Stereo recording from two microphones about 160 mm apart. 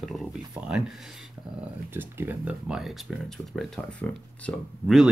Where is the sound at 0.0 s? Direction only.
Centre (ahead or behind).